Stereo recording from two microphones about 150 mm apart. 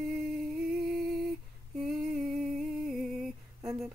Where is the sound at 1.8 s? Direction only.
Centre (ahead or behind).